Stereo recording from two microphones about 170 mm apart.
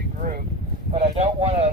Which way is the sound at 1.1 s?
35° right (ahead or behind).